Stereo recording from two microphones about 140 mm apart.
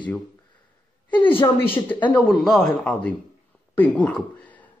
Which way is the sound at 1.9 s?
10° left (ahead or behind).